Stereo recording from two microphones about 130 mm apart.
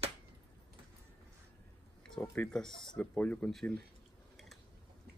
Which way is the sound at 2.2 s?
10° left (ahead or behind).